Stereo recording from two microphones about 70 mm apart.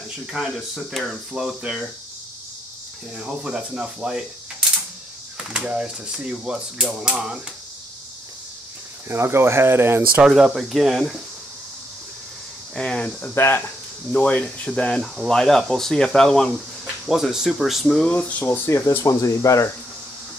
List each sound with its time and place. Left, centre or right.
0.3 s speech: centre
3.2 s speech: centre
9.1 s speech: right
10.2 s speech: centre
12.7 s speech: centre
13.3 s speech: left
14.1 s speech: centre
17.0 s speech: centre
18.1 s speech: left
18.7 s speech: left
19.0 s speech: left